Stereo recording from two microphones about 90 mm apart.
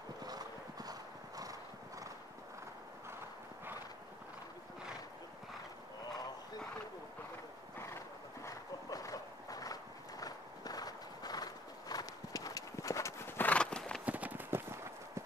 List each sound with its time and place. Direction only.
0.2 s clip-clop: 45° right (ahead or behind)
7.8 s a sound: 35° left (ahead or behind)
13.4 s horse: 15° left (ahead or behind)
14.0 s clip-clop: 15° right (ahead or behind)